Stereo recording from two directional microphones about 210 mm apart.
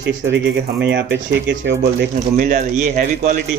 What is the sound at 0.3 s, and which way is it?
Speech, 55° right (ahead or behind).